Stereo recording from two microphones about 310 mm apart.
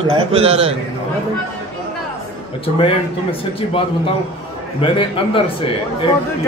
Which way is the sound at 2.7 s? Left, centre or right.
Centre.